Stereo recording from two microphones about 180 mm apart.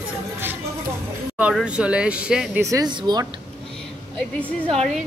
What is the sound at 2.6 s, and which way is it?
Speech, 20° right (ahead or behind).